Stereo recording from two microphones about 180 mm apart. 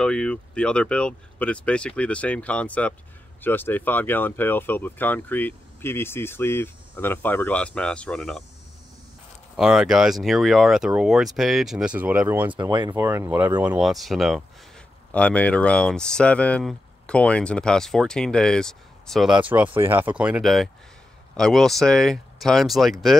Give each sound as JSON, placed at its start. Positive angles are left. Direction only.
{"t": 0.0, "sound": "speech", "side_deg": 5}
{"t": 9.6, "sound": "speech", "side_deg": -5}
{"t": 12.5, "sound": "speech", "side_deg": -25}
{"t": 12.9, "sound": "speech", "side_deg": -15}